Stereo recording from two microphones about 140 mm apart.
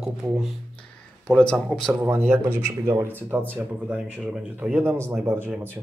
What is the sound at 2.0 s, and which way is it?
Speech, 10° right (ahead or behind).